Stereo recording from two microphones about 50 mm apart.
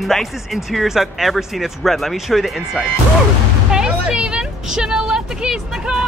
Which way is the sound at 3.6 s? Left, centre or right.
Centre.